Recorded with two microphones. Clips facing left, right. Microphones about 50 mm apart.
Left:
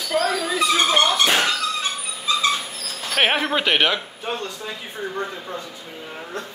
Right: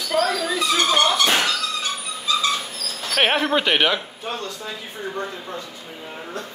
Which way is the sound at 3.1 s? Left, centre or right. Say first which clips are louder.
Right 1 dB; centre.